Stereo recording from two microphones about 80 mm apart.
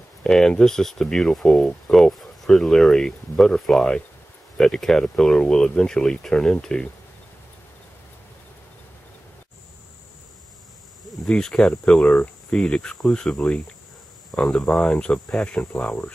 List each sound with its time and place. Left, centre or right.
0.2 s speech: centre
11.2 s speech: centre